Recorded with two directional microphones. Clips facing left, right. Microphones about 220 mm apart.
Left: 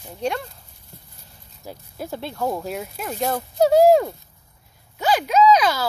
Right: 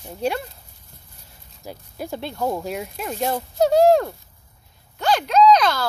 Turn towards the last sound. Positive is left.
turn(degrees=5)  # may be behind; listen again after turning